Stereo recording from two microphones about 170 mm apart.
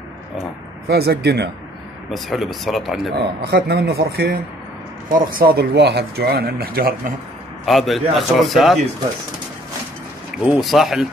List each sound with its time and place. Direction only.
0.8 s speech: 70° right (ahead or behind)
2.1 s a man's voice: centre (ahead or behind)
3.4 s speech: 70° right (ahead or behind)
7.6 s a man's voice: centre (ahead or behind)
10.4 s a man's voice: 5° right (ahead or behind)